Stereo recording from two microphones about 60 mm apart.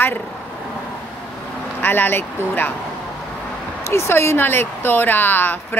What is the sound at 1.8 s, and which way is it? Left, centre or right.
Speech, left.